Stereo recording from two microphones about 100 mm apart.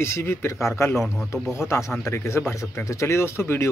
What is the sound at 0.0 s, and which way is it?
Speech, 25° left (ahead or behind).